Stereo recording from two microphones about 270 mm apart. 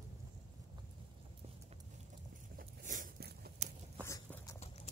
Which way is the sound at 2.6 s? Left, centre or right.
Right.